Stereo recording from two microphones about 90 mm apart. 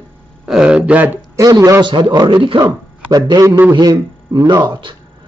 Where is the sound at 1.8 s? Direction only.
60° right (ahead or behind).